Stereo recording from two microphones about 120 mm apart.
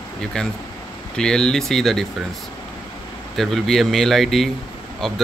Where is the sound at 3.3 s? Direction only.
Centre (ahead or behind).